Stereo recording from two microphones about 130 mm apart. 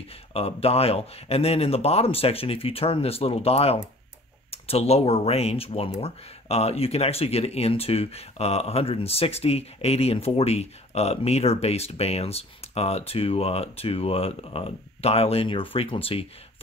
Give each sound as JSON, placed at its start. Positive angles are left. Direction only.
{"t": 0.3, "sound": "speech", "side_deg": 50}